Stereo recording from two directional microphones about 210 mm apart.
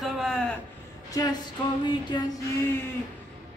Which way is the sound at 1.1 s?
15° left (ahead or behind).